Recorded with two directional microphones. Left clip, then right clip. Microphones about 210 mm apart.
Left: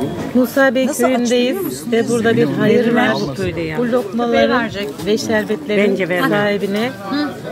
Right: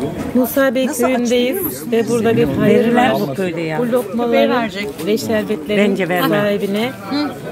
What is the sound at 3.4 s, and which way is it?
Speech, 45° right (ahead or behind).